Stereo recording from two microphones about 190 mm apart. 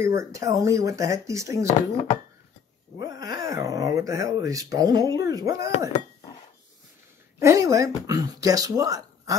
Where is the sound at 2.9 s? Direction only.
20° right (ahead or behind).